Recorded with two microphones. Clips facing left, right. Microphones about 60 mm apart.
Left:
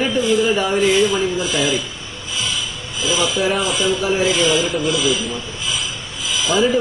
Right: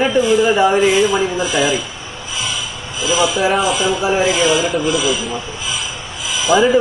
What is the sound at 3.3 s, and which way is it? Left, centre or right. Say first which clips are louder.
Speech: right 3 dB; centre.